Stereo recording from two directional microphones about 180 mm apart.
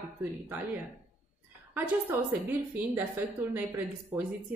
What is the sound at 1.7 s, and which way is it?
A woman's voice, 10° right (ahead or behind).